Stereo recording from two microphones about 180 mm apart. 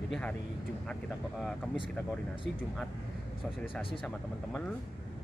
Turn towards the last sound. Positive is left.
turn(degrees=5)  # may be behind; listen again after turning